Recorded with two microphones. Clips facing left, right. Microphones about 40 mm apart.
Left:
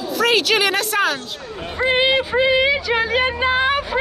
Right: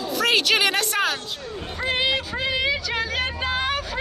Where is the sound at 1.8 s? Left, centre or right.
Left.